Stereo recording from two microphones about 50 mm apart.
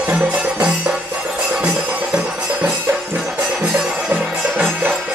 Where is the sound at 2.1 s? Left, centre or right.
Centre.